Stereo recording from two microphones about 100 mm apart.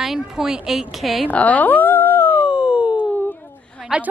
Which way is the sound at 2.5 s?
10° right (ahead or behind).